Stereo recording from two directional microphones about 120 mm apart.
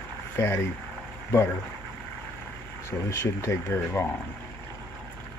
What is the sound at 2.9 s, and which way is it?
Speech, 25° left (ahead or behind).